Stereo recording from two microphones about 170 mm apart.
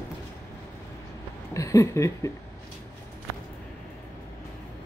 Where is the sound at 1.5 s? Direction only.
20° left (ahead or behind).